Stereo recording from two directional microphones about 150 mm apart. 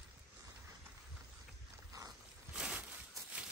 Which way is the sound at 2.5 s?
5° right (ahead or behind).